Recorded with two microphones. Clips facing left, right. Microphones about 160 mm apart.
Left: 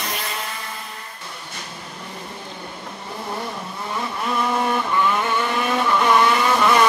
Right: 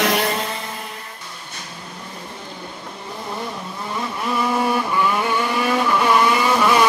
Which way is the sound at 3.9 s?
Centre (ahead or behind).